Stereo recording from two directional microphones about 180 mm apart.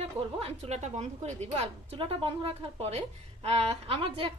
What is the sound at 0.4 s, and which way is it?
A woman's voice, 35° right (ahead or behind).